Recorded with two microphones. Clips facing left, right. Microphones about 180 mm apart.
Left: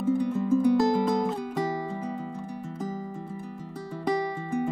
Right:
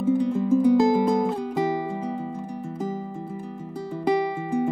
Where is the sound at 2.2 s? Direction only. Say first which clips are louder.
Right 4 dB; 25° right (ahead or behind).